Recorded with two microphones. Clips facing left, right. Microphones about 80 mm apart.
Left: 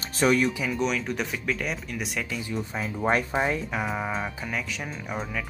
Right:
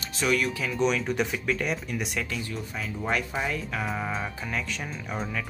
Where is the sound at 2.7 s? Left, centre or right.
Left.